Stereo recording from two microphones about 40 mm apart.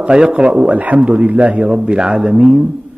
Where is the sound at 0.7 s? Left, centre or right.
Right.